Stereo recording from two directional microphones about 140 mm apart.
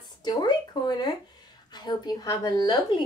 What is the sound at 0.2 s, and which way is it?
A woman's voice, 30° left (ahead or behind).